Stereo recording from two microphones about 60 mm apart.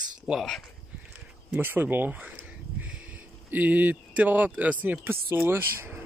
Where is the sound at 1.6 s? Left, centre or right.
Right.